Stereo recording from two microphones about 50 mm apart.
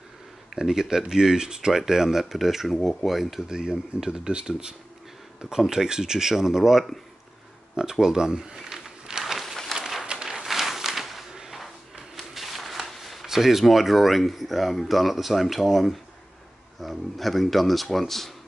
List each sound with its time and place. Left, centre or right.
0.6 s speech: centre
3.4 s speech: centre
7.7 s a sound: centre
9.8 s bird: centre
10.1 s a sound: centre
12.2 s speech: centre